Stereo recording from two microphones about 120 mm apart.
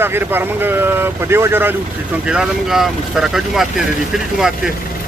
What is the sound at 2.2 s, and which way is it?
Speech, 5° right (ahead or behind).